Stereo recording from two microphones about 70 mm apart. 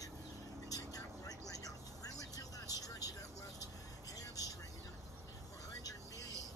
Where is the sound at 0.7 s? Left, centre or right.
Left.